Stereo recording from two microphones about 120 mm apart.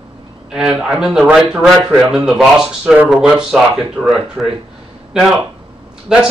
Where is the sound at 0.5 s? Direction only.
5° right (ahead or behind).